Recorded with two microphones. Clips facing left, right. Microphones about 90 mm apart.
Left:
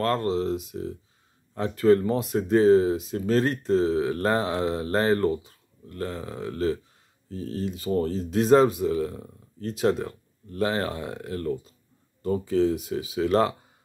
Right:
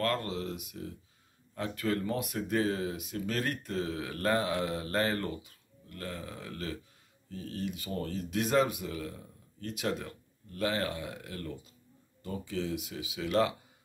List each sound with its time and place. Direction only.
0.0 s speech: 30° left (ahead or behind)